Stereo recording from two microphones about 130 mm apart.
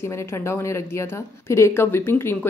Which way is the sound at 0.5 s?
20° left (ahead or behind).